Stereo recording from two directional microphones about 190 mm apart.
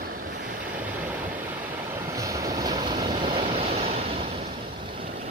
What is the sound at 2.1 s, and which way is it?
Vehicle, 15° right (ahead or behind).